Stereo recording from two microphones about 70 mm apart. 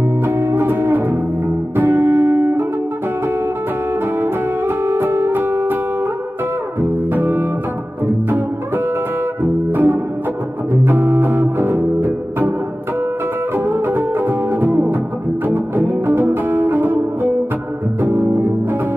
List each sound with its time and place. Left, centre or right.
0.2 s music: right
4.2 s music: right
6.8 s music: right
9.4 s music: right
13.7 s music: right